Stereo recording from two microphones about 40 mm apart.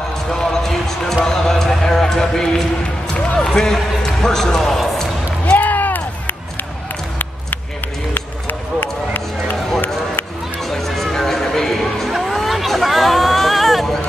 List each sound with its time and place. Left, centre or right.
0.3 s basketball bounce: centre
1.2 s a sound: centre
5.5 s run: left
8.1 s run: left
10.6 s music: centre
12.1 s a sound: centre
12.4 s hubbub: centre